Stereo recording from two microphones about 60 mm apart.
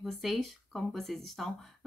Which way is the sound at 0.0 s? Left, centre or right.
Centre.